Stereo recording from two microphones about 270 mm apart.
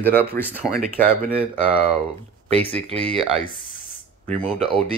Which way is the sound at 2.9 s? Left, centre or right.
Right.